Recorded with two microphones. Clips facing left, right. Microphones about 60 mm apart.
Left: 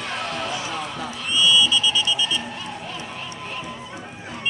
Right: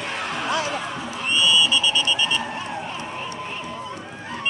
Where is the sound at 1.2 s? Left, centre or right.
Right.